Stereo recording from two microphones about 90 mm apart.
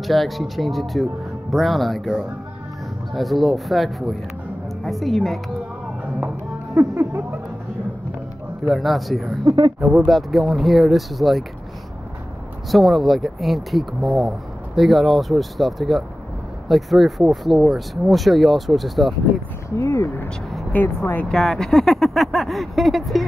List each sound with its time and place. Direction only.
0.0 s speech: centre (ahead or behind)
3.1 s speech: centre (ahead or behind)
6.7 s music: 20° right (ahead or behind)
8.6 s speech: centre (ahead or behind)
12.7 s speech: centre (ahead or behind)
19.7 s speech: 35° left (ahead or behind)
21.0 s speech: 20° left (ahead or behind)
21.3 s speech: 5° left (ahead or behind)